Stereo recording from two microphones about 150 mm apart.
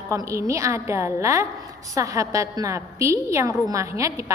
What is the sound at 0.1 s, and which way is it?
A woman's voice, 20° right (ahead or behind).